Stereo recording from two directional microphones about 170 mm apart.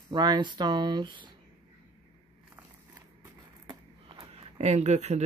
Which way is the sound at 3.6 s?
30° right (ahead or behind).